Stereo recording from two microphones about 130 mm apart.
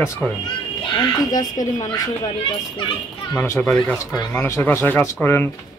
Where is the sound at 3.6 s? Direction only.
10° left (ahead or behind).